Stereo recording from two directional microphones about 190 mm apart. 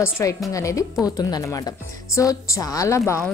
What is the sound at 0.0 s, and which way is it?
Speech, 15° left (ahead or behind).